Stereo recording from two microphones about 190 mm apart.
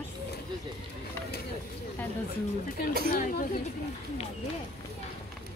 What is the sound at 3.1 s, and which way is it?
Speech, 45° left (ahead or behind).